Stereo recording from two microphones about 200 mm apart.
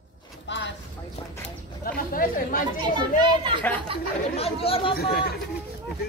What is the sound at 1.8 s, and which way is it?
Speech, 45° left (ahead or behind).